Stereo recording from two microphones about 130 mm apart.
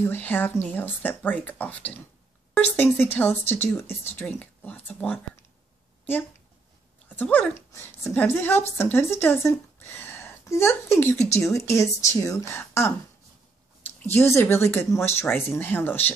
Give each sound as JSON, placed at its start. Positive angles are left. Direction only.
{"t": 0.1, "sound": "speech", "side_deg": 15}
{"t": 7.1, "sound": "a woman's voice", "side_deg": 10}
{"t": 14.1, "sound": "speech", "side_deg": 20}